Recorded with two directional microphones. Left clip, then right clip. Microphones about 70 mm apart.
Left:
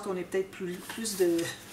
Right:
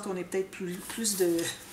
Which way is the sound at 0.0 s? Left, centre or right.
Right.